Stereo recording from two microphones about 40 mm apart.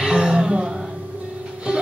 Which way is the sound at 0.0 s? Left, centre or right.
Right.